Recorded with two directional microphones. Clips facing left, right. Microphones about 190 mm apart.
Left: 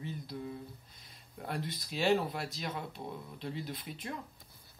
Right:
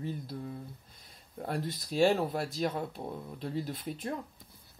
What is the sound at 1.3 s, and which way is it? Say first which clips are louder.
Speech: right 4 dB; 40° right (ahead or behind).